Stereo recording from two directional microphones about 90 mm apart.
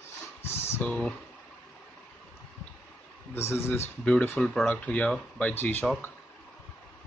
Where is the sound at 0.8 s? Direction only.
15° left (ahead or behind).